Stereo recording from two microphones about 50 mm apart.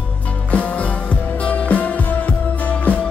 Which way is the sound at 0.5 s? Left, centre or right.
Left.